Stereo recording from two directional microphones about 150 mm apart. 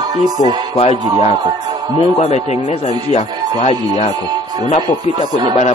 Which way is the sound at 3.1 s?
45° left (ahead or behind).